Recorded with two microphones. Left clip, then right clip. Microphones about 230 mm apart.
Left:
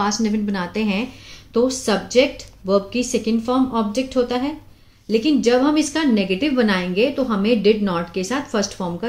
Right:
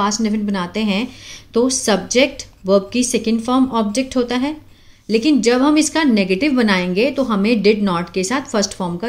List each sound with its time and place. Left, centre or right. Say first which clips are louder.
0.0 s a woman's voice: right 2 dB; centre
1.5 s a woman's voice: right 3 dB; right